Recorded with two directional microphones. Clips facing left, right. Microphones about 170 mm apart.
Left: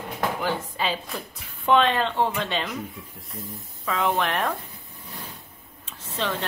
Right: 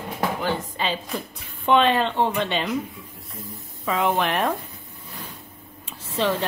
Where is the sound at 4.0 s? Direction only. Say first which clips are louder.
Right 2 dB; centre (ahead or behind).